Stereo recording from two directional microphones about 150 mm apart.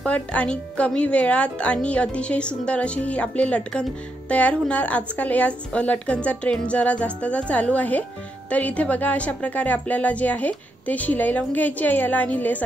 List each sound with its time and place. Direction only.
0.0 s a woman's voice: 10° left (ahead or behind)